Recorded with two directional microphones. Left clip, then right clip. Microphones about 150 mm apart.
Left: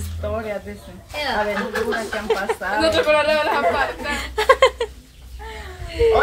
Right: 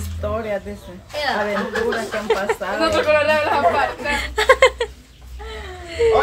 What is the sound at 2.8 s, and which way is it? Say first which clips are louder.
Speech: right 1 dB; 25° left (ahead or behind).